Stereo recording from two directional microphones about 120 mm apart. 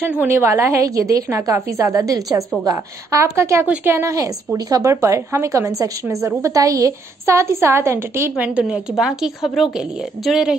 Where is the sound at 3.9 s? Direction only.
25° right (ahead or behind).